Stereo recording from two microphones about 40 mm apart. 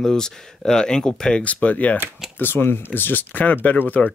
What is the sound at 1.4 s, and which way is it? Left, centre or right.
Speech, left.